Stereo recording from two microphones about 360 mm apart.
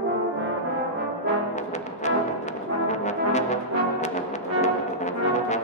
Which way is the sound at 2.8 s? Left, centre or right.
Centre.